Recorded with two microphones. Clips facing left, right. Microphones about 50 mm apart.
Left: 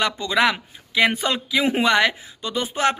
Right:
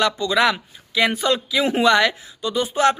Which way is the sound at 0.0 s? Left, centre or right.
Left.